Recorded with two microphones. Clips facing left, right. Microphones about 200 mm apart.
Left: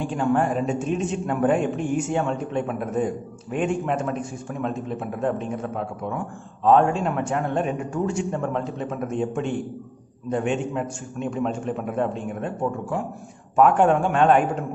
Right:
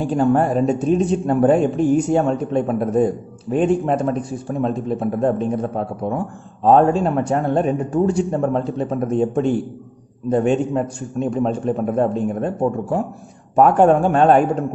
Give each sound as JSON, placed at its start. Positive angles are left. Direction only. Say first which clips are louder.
{"t": 0.0, "sound": "a man's voice", "louder": "right 5 dB", "side_deg": -40}